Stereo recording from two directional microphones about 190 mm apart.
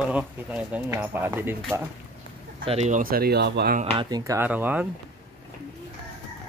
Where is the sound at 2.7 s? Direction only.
40° right (ahead or behind); by 3.8 s 60° right (ahead or behind).